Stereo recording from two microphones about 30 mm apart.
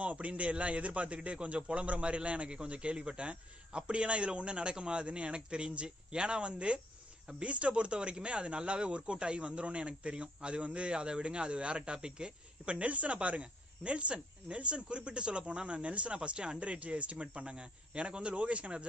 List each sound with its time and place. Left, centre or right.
0.0 s a man's voice: right
12.6 s speech: right